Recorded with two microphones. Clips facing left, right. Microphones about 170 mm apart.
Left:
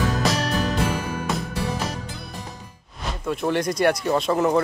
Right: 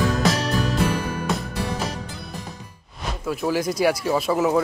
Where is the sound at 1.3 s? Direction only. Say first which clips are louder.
Right 1 dB; centre (ahead or behind).